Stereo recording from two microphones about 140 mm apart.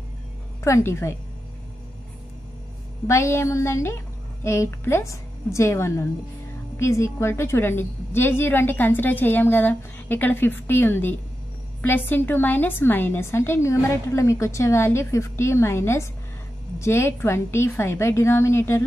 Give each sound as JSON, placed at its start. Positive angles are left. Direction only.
{"t": 0.7, "sound": "a woman's voice", "side_deg": 20}
{"t": 3.1, "sound": "a woman's voice", "side_deg": 20}